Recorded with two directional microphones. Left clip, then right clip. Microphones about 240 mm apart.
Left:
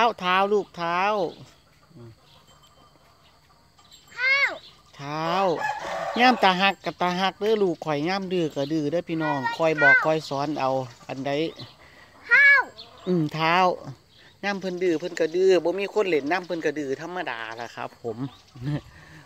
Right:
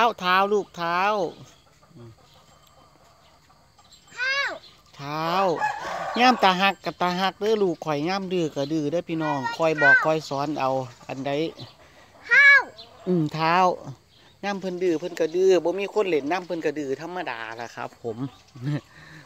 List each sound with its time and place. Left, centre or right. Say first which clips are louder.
0.0 s speech: right 1 dB; centre
4.1 s fowl: left 4 dB; centre
5.8 s chicken: even; left
6.4 s speech: even; centre
12.2 s a sound: right 1 dB; centre
12.7 s speech: right 1 dB; centre